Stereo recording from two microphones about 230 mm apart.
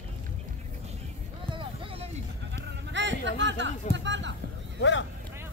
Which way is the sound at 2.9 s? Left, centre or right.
Right.